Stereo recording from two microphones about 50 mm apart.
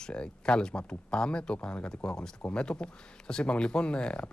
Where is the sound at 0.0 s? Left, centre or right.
Centre.